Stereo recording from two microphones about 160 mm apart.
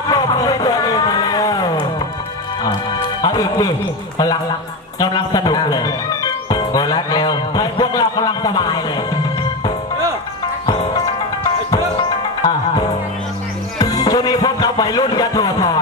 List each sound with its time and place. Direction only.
0.1 s a sound: 25° left (ahead or behind)
3.2 s music: 25° left (ahead or behind)
4.9 s a man's voice: 25° left (ahead or behind)
11.4 s music: 30° left (ahead or behind)